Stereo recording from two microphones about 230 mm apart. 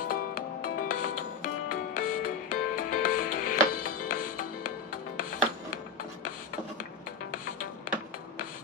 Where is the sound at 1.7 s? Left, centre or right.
Left.